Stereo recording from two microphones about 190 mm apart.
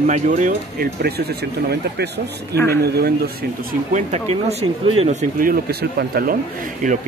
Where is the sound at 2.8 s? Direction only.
55° right (ahead or behind).